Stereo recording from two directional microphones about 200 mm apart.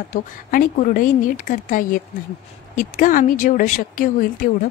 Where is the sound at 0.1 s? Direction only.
45° left (ahead or behind).